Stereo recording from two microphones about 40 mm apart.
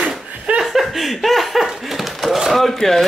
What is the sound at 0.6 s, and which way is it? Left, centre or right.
Laughter, centre.